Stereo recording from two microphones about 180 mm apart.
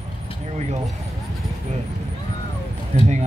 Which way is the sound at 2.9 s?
40° right (ahead or behind).